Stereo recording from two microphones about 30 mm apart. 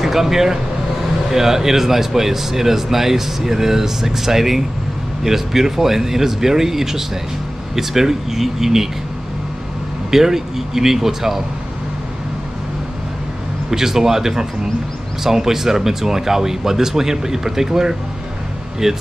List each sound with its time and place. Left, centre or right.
0.0 s speech: centre
10.1 s speech: centre
13.7 s speech: centre